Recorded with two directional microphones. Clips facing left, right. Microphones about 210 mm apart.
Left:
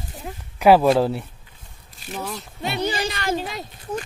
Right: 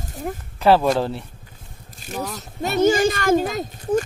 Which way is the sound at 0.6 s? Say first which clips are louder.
Left 2 dB; 10° left (ahead or behind).